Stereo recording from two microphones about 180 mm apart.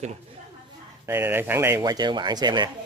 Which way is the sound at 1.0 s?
10° right (ahead or behind).